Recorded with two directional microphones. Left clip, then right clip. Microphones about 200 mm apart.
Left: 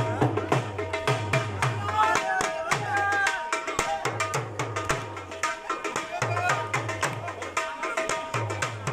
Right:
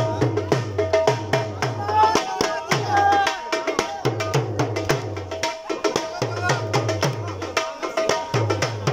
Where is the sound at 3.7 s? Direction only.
60° right (ahead or behind).